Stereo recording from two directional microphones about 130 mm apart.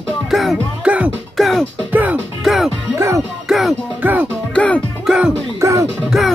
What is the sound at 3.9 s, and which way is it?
Music, 15° right (ahead or behind).